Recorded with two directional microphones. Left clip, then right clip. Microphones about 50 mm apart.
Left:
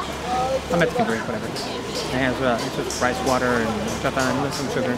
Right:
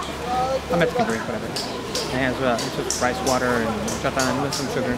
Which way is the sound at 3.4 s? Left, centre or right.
Centre.